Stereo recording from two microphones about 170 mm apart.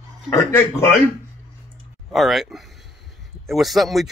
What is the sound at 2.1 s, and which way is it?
A man's voice, centre (ahead or behind).